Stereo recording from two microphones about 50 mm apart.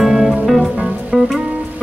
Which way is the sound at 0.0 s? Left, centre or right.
Centre.